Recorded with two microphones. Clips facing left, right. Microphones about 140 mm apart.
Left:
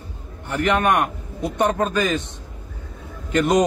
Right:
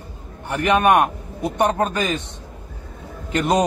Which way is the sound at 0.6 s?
15° right (ahead or behind).